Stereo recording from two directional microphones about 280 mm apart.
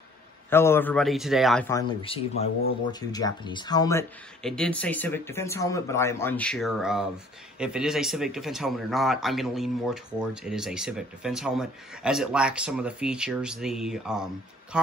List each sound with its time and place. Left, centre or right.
0.5 s speech: centre
4.4 s speech: centre